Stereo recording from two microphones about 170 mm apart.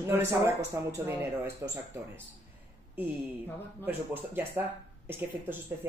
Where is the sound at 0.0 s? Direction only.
15° right (ahead or behind).